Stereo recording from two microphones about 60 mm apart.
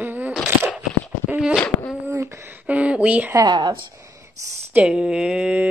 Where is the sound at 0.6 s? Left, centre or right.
Right.